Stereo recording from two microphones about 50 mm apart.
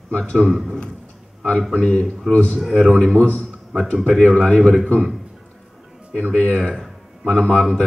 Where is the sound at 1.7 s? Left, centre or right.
Left.